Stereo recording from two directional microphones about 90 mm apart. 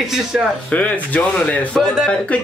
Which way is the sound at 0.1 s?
5° right (ahead or behind).